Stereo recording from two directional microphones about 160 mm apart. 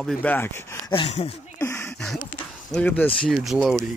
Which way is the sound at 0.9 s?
40° left (ahead or behind).